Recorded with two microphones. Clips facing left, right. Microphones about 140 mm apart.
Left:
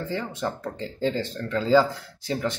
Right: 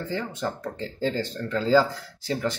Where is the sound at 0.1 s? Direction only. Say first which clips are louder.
Right 1 dB; centre (ahead or behind).